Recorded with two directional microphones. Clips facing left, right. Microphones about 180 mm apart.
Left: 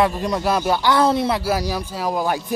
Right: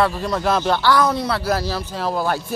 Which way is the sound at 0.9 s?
25° left (ahead or behind).